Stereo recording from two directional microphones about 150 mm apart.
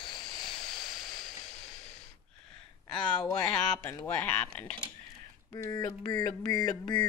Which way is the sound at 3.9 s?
15° left (ahead or behind).